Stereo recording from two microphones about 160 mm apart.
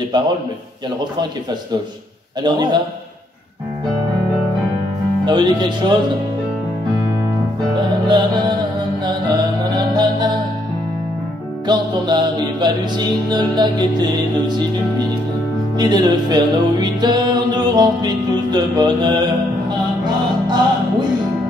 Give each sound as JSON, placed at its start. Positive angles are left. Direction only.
{"t": 0.1, "sound": "music", "side_deg": -30}
{"t": 2.4, "sound": "music", "side_deg": -25}
{"t": 5.2, "sound": "music", "side_deg": -30}
{"t": 7.7, "sound": "music", "side_deg": -30}
{"t": 11.6, "sound": "music", "side_deg": -25}
{"t": 15.8, "sound": "music", "side_deg": -25}